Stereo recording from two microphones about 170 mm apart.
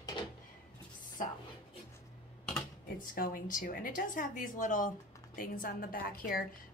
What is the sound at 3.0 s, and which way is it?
A woman's voice, 55° left (ahead or behind).